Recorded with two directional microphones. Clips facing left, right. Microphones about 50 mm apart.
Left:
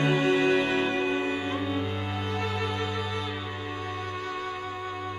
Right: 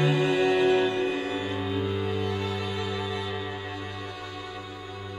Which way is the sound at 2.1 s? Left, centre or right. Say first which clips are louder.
Right 1 dB; left.